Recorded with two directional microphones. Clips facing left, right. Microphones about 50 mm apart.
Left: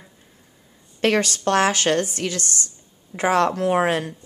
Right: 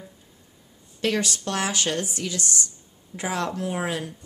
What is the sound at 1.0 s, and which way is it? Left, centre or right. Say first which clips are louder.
Speech: left 6 dB; left.